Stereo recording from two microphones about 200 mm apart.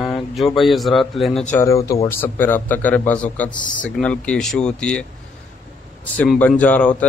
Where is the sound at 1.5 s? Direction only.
15° left (ahead or behind).